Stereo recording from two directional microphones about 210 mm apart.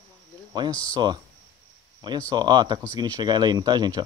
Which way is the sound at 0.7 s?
25° left (ahead or behind).